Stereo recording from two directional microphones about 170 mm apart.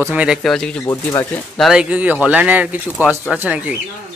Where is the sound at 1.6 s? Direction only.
5° right (ahead or behind).